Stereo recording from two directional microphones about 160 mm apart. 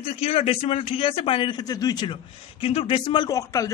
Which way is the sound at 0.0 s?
35° left (ahead or behind).